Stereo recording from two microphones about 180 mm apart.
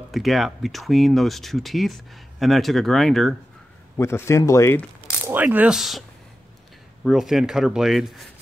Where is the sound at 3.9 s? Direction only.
15° left (ahead or behind).